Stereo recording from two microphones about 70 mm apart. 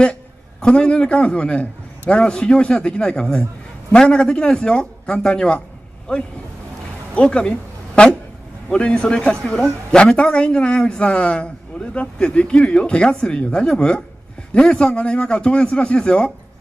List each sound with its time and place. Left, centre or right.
0.0 s a man's voice: centre